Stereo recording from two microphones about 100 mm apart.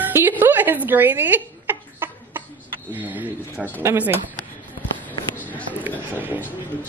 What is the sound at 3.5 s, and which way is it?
Speech, 20° left (ahead or behind).